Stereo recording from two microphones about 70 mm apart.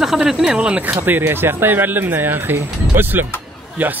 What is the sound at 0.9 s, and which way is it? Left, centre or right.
A man's voice, right.